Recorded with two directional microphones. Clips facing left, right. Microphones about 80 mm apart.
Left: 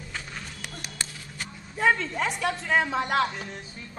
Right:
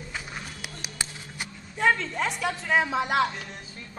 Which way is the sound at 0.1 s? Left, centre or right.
Centre.